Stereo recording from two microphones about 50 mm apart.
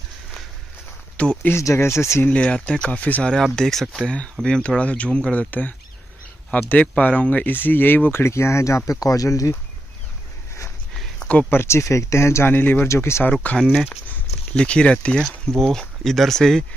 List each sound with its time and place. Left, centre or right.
1.1 s speech: left
1.5 s speech: left
2.2 s speech: left
2.9 s speech: left
3.5 s speech: centre
5.4 s speech: left
8.3 s speech: left
11.1 s a sound: left
11.6 s speech: left
12.4 s speech: left
12.8 s speech: left
13.4 s speech: left
14.5 s speech: centre
15.2 s speech: centre